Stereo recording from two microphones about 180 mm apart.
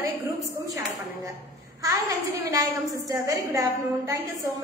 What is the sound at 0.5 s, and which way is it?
Dishes, 15° right (ahead or behind).